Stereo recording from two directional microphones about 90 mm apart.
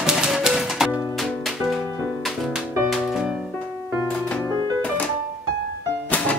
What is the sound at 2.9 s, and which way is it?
Music, centre (ahead or behind).